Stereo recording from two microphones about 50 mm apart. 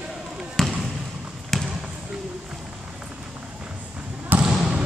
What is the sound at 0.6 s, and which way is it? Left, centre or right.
Basketball bounce, centre.